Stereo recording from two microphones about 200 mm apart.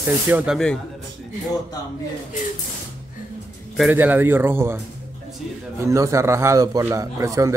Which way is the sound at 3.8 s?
10° right (ahead or behind).